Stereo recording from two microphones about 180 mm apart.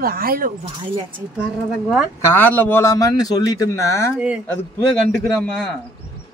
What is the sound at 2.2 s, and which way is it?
A man's voice, 10° left (ahead or behind).